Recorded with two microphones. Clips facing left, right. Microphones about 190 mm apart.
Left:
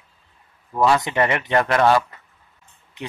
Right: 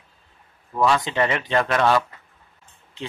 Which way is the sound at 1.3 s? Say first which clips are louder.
Left 2 dB; 15° left (ahead or behind).